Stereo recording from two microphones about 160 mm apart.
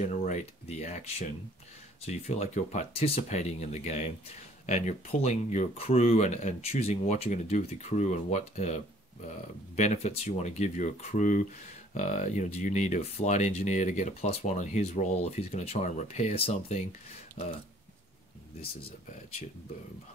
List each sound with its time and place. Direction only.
0.0 s speech: 50° left (ahead or behind)